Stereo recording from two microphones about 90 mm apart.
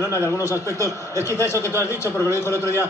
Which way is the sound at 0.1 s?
35° left (ahead or behind).